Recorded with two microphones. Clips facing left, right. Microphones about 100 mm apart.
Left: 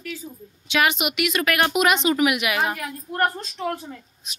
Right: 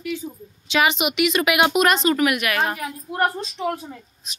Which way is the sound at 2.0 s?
10° left (ahead or behind).